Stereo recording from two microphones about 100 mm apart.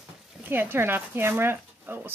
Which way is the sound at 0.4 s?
20° right (ahead or behind).